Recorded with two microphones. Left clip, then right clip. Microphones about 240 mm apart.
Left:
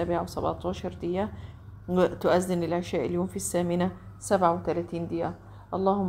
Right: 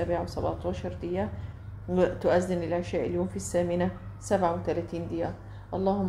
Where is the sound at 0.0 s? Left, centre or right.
Left.